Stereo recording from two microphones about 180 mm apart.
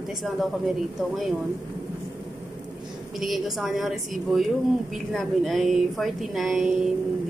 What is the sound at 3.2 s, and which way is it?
Speech, centre (ahead or behind).